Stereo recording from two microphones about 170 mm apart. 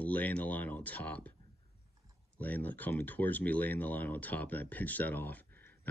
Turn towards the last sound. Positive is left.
turn(degrees=10)  # may be behind; listen again after turning